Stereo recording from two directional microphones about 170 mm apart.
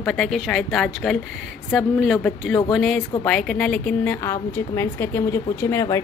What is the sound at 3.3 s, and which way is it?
A woman's voice, 5° left (ahead or behind).